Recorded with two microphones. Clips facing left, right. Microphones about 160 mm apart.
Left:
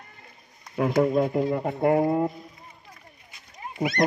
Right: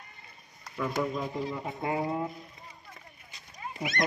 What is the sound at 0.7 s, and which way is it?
Speech, 65° left (ahead or behind).